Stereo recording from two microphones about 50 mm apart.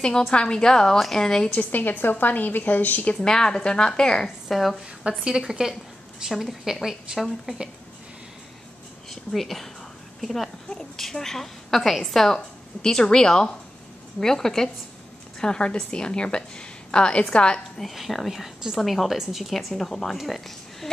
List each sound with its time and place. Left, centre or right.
0.3 s a woman's voice: centre
0.9 s a woman's voice: centre
1.2 s a woman's voice: centre
1.5 s a woman's voice: left
3.2 s a woman's voice: centre
4.5 s a woman's voice: centre
5.2 s a woman's voice: centre
9.1 s a woman's voice: centre
17.7 s a woman's voice: centre